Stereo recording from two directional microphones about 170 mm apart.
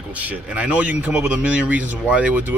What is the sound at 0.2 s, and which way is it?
Speech, 10° right (ahead or behind).